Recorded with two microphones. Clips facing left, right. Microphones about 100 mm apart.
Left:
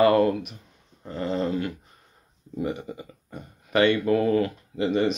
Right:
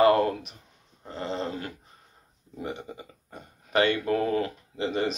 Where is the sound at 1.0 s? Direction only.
30° right (ahead or behind).